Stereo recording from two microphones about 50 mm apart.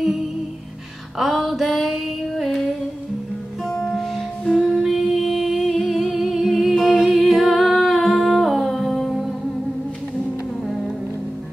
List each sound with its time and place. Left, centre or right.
1.1 s female singing: centre
3.6 s music: centre
4.6 s humming: centre